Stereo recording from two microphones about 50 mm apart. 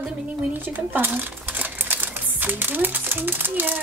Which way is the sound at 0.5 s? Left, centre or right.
Right.